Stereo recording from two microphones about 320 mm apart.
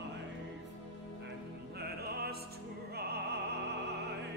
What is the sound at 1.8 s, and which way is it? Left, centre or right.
Opera, right.